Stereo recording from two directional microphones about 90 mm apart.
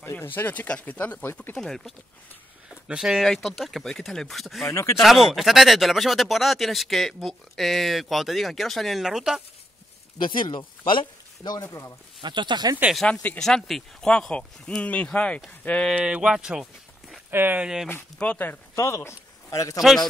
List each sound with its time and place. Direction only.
0.0 s speech: 25° left (ahead or behind)
1.6 s speech: 5° left (ahead or behind)
2.9 s speech: 5° right (ahead or behind)
4.6 s speech: 30° left (ahead or behind)
5.0 s speech: 5° right (ahead or behind)
10.2 s speech: 65° left (ahead or behind)
12.2 s speech: 60° right (ahead or behind)
12.9 s speech: 10° left (ahead or behind)
13.4 s speech: 5° left (ahead or behind)
16.0 s speech: 10° right (ahead or behind)
17.3 s speech: 25° right (ahead or behind)
17.8 s speech: 25° left (ahead or behind)